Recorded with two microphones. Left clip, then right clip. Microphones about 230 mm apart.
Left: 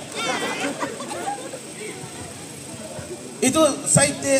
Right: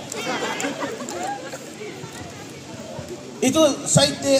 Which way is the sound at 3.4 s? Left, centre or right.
Centre.